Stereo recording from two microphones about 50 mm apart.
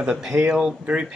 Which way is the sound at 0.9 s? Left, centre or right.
Right.